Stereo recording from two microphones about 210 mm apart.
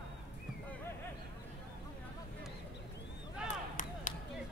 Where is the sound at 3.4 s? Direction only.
35° left (ahead or behind).